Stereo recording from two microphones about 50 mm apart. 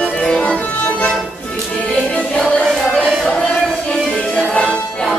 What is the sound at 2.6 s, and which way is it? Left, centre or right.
Music, centre.